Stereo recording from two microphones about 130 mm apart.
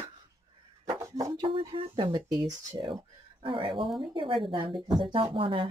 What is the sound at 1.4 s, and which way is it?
Speech, 45° right (ahead or behind).